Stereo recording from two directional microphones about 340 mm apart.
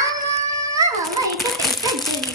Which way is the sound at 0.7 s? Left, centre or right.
Centre.